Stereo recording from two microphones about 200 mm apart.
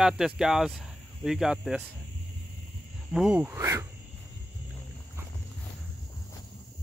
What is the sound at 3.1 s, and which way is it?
Speech, 5° right (ahead or behind).